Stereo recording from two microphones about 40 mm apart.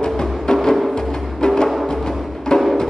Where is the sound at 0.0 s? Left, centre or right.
Centre.